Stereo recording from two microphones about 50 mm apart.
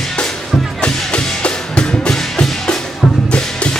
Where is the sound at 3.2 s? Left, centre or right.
Left.